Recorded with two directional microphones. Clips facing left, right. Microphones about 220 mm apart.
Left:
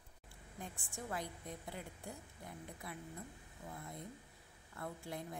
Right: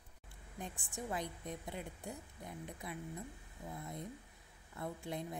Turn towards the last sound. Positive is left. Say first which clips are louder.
# right 3 dB
turn(degrees=-20)  # may be behind; listen again after turning